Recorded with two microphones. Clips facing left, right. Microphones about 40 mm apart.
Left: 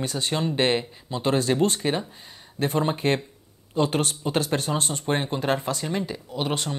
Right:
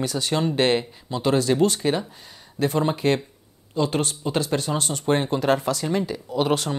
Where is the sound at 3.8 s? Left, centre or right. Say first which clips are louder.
Even; left.